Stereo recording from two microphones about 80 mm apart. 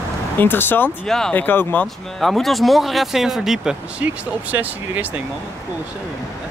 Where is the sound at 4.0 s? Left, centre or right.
Centre.